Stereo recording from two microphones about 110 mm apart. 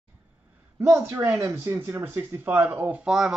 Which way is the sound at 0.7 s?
25° right (ahead or behind).